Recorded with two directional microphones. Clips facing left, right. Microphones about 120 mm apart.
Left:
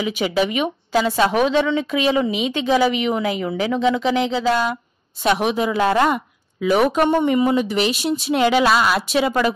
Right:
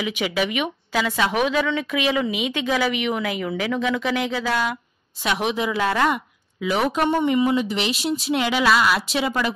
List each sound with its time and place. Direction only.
0.0 s a woman's voice: 35° left (ahead or behind)
5.2 s speech: 45° left (ahead or behind)
5.8 s speech: 35° left (ahead or behind)
6.8 s a woman's voice: 50° left (ahead or behind)